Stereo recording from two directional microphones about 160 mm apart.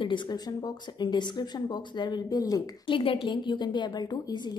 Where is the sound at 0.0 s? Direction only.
30° left (ahead or behind).